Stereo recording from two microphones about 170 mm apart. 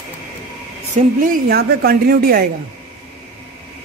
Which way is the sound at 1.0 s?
55° right (ahead or behind).